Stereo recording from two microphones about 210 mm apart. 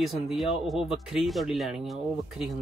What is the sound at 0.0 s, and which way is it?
Speech, centre (ahead or behind).